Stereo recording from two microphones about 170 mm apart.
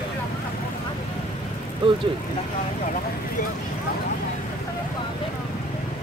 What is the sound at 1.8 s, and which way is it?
Speech, 30° right (ahead or behind).